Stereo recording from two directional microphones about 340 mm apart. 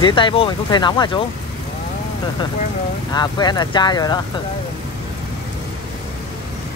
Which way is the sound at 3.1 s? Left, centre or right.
Centre.